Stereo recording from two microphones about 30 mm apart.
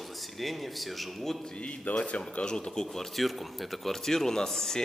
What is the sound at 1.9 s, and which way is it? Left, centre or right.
Speech, left.